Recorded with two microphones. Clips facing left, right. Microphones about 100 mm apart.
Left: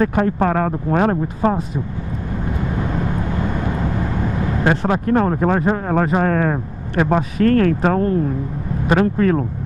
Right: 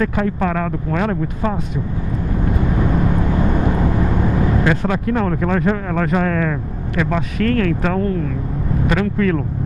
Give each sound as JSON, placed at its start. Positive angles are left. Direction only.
{"t": 0.0, "sound": "speech", "side_deg": 40}
{"t": 4.6, "sound": "speech", "side_deg": 35}